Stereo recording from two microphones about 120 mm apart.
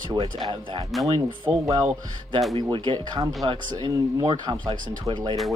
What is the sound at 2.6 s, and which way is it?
Speech, 40° right (ahead or behind).